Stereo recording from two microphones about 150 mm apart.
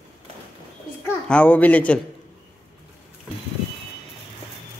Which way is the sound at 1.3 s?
10° left (ahead or behind).